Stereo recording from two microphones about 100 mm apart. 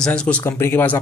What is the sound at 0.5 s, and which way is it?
Speech, 25° left (ahead or behind).